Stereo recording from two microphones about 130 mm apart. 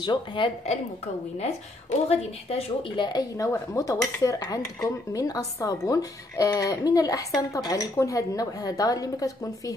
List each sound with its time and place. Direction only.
0.0 s a woman's voice: 40° left (ahead or behind)
1.4 s speech: 55° left (ahead or behind)
3.0 s speech: 30° left (ahead or behind)